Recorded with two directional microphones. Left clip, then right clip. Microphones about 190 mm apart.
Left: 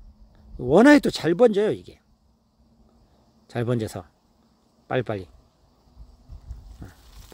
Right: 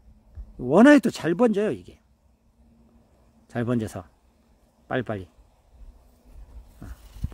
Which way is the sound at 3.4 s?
10° left (ahead or behind).